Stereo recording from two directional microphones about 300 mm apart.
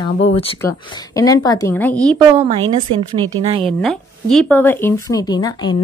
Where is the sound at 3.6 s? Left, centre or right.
Centre.